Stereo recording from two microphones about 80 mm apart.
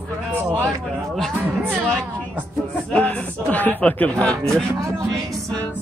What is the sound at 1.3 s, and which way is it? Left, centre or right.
Speech, right.